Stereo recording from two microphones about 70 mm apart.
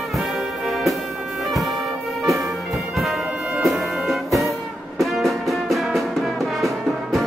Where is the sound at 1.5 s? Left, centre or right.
Centre.